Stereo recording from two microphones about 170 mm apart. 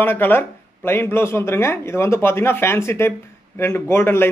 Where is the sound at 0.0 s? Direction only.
10° left (ahead or behind).